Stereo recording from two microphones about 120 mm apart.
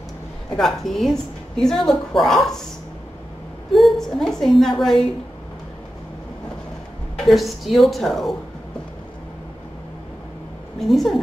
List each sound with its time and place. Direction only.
0.6 s a woman's voice: centre (ahead or behind)
3.7 s a woman's voice: centre (ahead or behind)
7.2 s a woman's voice: centre (ahead or behind)
10.8 s a woman's voice: centre (ahead or behind)